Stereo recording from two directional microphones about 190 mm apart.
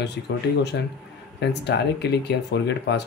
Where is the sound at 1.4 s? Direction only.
65° left (ahead or behind).